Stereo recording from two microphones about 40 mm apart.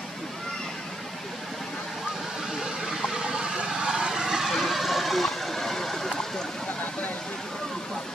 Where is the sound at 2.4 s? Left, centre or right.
Centre.